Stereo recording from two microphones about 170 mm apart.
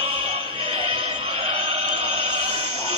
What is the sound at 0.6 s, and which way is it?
Music, 35° right (ahead or behind).